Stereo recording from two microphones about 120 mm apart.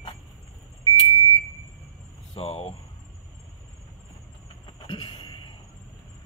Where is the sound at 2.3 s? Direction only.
55° left (ahead or behind).